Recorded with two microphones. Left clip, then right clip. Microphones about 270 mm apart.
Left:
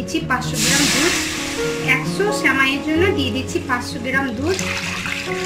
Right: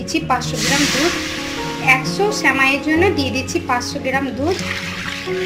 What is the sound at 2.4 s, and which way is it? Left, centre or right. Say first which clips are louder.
Speech: right 2 dB; centre.